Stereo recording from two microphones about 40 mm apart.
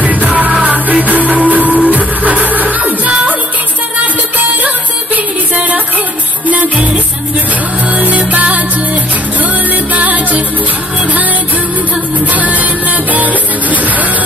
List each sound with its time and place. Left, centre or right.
0.0 s music: right
2.8 s music: right
4.4 s music: right
6.4 s music: right
9.9 s music: right
12.3 s music: right